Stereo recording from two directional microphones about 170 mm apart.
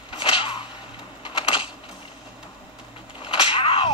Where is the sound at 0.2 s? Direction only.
30° left (ahead or behind).